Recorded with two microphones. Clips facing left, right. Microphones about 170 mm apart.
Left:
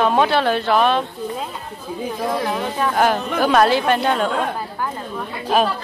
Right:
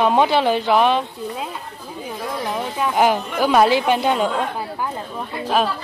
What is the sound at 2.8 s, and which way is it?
A woman's voice, 15° right (ahead or behind).